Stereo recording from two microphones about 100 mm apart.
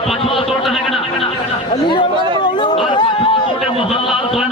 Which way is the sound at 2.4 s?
50° left (ahead or behind).